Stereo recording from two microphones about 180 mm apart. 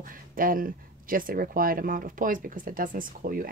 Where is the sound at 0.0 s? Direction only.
50° right (ahead or behind).